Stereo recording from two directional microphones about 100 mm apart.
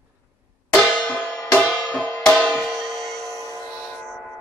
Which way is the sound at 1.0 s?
15° left (ahead or behind).